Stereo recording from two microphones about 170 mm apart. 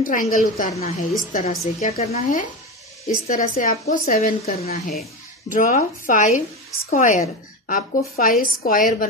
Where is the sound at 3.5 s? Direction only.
50° left (ahead or behind).